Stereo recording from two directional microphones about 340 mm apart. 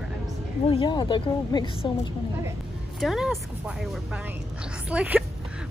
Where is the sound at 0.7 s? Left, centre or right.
Centre.